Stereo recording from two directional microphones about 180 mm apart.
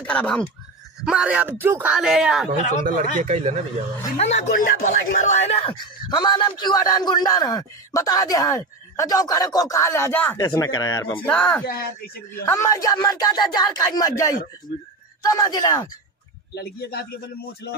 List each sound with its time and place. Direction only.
0.0 s speech: 5° left (ahead or behind)
1.0 s speech: 5° right (ahead or behind)
3.2 s speech: 40° right (ahead or behind)
4.2 s speech: 40° left (ahead or behind)
6.0 s a man's voice: 25° left (ahead or behind)
11.2 s speech: 5° left (ahead or behind)
11.6 s speech: 55° left (ahead or behind)
12.4 s a man's voice: 15° left (ahead or behind)
16.5 s speech: 60° left (ahead or behind)